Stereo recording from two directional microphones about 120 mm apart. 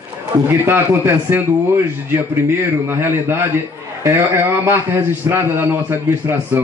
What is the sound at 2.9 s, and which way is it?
A man's voice, 20° right (ahead or behind).